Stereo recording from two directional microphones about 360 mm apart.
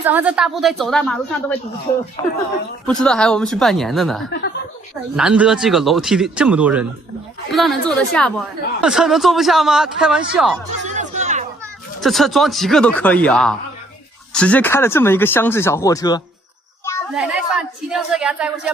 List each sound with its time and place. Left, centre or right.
0.0 s speech: centre
4.3 s speech: left
5.1 s speech: centre
10.8 s music: centre
12.0 s speech: centre
17.6 s speech: centre